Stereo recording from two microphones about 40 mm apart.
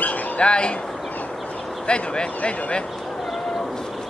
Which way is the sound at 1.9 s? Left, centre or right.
Left.